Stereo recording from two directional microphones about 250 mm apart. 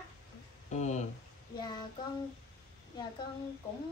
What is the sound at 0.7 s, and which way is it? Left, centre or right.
Speech, left.